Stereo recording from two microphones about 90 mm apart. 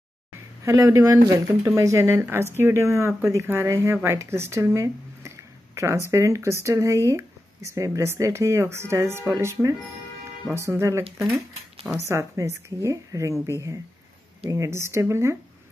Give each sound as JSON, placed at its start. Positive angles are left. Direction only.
{"t": 0.7, "sound": "speech", "side_deg": -35}
{"t": 12.1, "sound": "speech", "side_deg": -35}